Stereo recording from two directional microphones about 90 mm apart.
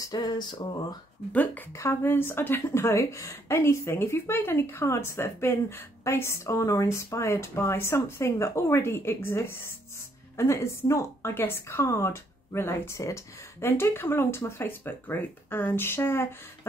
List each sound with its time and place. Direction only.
0.0 s a sound: 45° left (ahead or behind)
1.3 s speech: 15° left (ahead or behind)
1.7 s a woman's voice: 30° left (ahead or behind)